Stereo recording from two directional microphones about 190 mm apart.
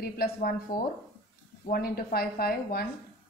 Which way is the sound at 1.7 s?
50° left (ahead or behind).